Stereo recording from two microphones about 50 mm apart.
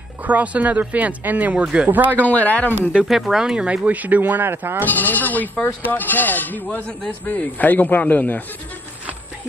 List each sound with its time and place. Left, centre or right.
0.2 s speech: right
1.6 s speech: right
1.9 s speech: right
2.1 s speech: left
3.1 s speech: centre
3.5 s speech: right
4.8 s speech: left